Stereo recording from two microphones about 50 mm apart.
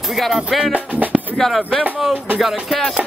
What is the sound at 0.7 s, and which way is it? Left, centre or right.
Music, right.